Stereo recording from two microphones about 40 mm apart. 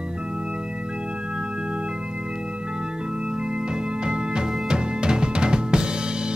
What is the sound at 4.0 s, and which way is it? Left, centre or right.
Music, centre.